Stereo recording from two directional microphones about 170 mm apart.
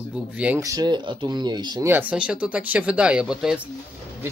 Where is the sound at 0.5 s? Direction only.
20° right (ahead or behind).